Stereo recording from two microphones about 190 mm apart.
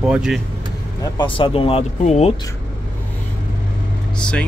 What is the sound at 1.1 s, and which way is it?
Speech, 25° left (ahead or behind).